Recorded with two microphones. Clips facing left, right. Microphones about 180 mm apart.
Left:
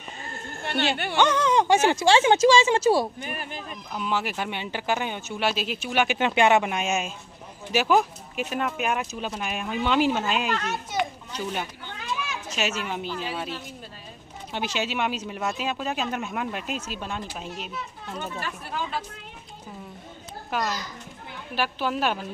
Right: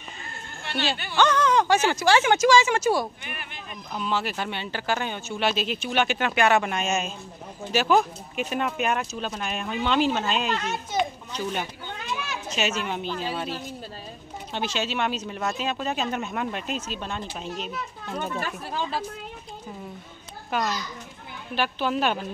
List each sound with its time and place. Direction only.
0.6 s a sound: 50° left (ahead or behind)
1.1 s speech: 20° left (ahead or behind); by 3.6 s 40° left (ahead or behind)
3.9 s speech: 10° left (ahead or behind)
6.1 s speech: 20° left (ahead or behind)
10.5 s a child's voice: 20° right (ahead or behind)
12.4 s a child's voice: 5° left (ahead or behind)
14.5 s speech: 15° left (ahead or behind)
18.1 s speech: 35° right (ahead or behind)
20.5 s a child's voice: centre (ahead or behind)